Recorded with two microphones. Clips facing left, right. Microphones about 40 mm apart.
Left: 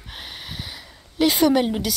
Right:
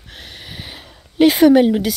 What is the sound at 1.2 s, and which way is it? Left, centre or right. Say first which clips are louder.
Speech: right 7 dB; centre.